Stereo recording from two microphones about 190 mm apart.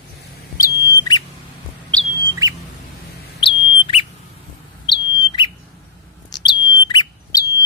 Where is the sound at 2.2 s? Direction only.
20° right (ahead or behind).